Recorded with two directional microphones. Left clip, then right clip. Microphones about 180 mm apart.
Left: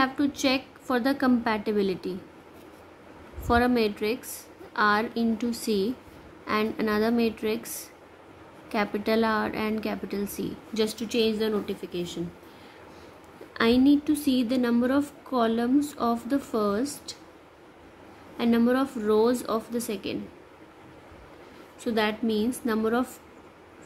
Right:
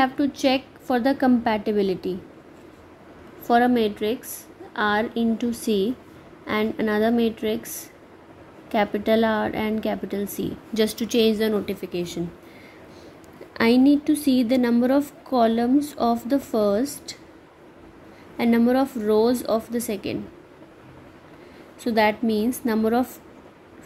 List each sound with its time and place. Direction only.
0.0 s a woman's voice: 15° right (ahead or behind)
3.4 s a woman's voice: 15° right (ahead or behind); by 12.2 s 35° right (ahead or behind)
13.5 s a woman's voice: 25° right (ahead or behind)
18.4 s a woman's voice: 25° right (ahead or behind)
21.8 s a woman's voice: 25° right (ahead or behind)